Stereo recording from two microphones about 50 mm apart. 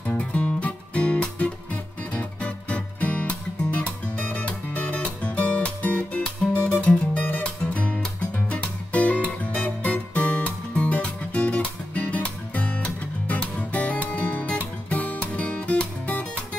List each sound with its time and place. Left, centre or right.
0.2 s music: left